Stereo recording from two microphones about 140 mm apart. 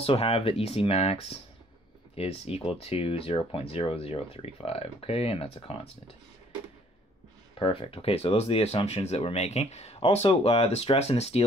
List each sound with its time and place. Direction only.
0.0 s speech: 45° left (ahead or behind)
7.5 s speech: 40° left (ahead or behind)